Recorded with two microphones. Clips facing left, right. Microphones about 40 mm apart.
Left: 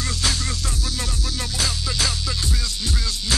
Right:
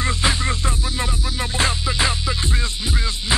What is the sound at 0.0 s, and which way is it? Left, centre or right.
Music, right.